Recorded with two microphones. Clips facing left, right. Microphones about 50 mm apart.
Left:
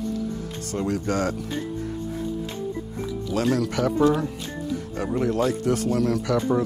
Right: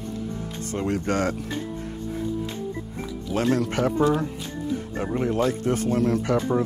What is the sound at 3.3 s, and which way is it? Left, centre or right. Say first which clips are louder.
Speech: right 1 dB; right.